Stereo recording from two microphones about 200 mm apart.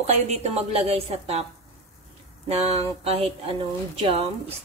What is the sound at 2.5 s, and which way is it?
Speech, 30° right (ahead or behind).